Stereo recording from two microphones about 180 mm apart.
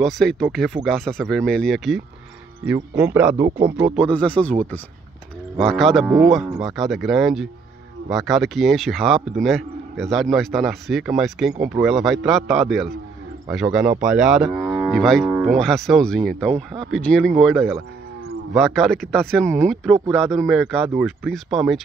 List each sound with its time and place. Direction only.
0.0 s a man's voice: 5° left (ahead or behind)
3.9 s a man's voice: 5° left (ahead or behind)
20.9 s speech: 10° right (ahead or behind)
21.3 s a man's voice: centre (ahead or behind)